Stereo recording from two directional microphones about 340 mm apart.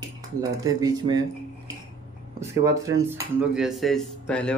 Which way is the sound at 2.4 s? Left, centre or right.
Centre.